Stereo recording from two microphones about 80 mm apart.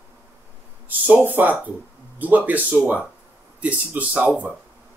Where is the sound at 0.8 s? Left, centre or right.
Right.